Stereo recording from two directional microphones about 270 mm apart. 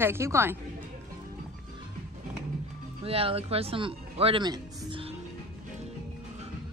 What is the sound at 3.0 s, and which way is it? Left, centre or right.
A man's voice, right.